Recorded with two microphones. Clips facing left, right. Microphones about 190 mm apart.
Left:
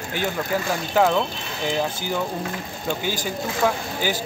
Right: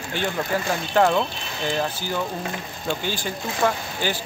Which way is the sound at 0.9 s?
5° left (ahead or behind).